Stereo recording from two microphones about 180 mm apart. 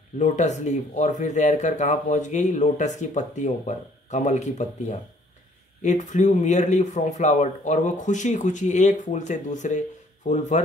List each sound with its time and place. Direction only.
0.2 s speech: 40° left (ahead or behind)